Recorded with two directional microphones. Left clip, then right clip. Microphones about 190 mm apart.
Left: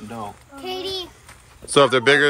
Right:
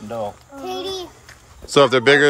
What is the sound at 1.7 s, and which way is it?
Speech, 25° right (ahead or behind).